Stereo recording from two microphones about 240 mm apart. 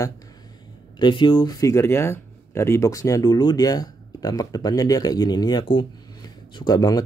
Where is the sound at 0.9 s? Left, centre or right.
Centre.